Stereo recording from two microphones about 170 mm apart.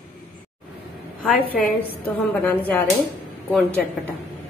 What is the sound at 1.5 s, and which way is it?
A woman's voice, 10° left (ahead or behind).